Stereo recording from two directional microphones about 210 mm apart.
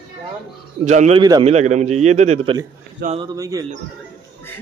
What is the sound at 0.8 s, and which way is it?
A man's voice, 35° right (ahead or behind).